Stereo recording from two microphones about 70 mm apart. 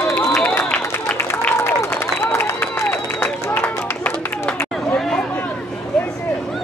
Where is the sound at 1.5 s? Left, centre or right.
Left.